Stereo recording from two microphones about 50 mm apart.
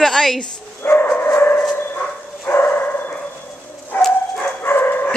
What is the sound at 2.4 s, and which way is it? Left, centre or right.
Bow-wow, left.